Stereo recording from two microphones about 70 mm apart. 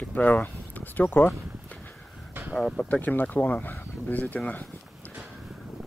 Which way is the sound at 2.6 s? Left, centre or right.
Centre.